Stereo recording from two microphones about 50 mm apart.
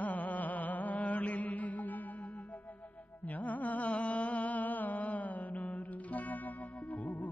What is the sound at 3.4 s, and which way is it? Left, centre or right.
Music, left.